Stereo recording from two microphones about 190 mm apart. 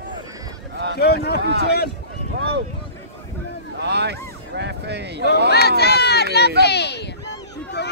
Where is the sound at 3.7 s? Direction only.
60° right (ahead or behind).